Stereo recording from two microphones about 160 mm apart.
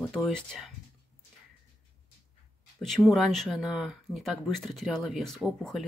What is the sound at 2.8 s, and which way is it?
Speech, centre (ahead or behind).